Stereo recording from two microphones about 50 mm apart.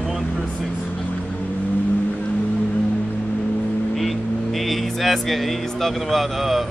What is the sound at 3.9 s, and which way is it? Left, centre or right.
Speech, centre.